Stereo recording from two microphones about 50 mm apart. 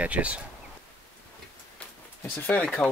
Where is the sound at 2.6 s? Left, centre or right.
Left.